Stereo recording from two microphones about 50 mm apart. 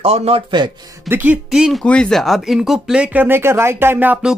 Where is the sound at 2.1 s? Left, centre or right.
Centre.